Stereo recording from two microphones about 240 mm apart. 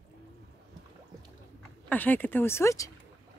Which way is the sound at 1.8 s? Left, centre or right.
Centre.